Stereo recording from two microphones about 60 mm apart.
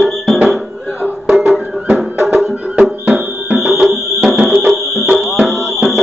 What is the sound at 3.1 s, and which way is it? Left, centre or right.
Music, right.